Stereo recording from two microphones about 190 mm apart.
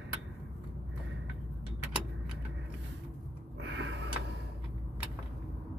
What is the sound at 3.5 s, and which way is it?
Music, 75° right (ahead or behind).